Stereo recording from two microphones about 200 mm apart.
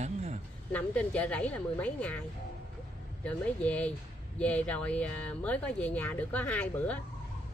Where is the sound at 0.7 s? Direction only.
5° left (ahead or behind).